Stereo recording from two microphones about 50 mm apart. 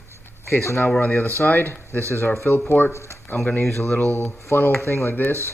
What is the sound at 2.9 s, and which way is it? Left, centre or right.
Speech, left.